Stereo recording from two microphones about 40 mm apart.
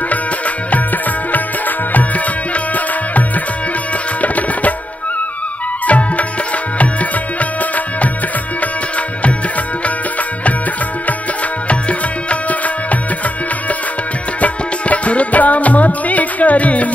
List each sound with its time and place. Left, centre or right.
1.9 s music: left
4.2 s tabla: left
5.9 s music: left
12.3 s music: left
14.4 s music: left